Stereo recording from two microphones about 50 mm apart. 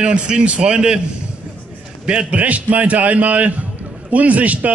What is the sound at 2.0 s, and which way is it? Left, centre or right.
A man's voice, right.